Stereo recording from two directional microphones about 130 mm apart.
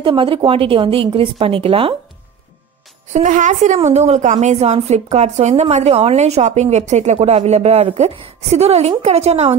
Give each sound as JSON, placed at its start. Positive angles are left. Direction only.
{"t": 0.0, "sound": "a woman's voice", "side_deg": -40}
{"t": 3.1, "sound": "a woman's voice", "side_deg": -70}